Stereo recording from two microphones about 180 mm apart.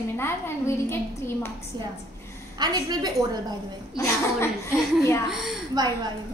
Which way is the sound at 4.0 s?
15° left (ahead or behind).